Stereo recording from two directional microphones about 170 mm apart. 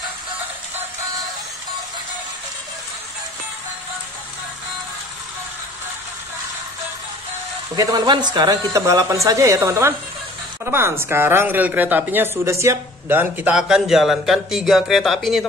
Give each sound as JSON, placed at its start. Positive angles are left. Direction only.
{"t": 7.7, "sound": "speech", "side_deg": -20}